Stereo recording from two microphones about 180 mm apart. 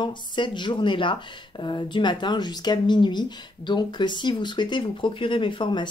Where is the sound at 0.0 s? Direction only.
25° left (ahead or behind).